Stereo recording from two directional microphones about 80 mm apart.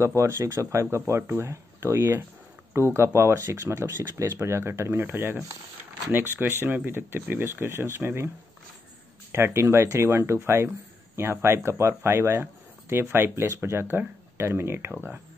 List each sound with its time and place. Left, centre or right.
0.0 s speech: right
6.5 s speech: right
9.3 s speech: right